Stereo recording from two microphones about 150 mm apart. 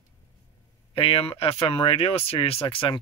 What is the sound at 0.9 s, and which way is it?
Speech, 40° left (ahead or behind).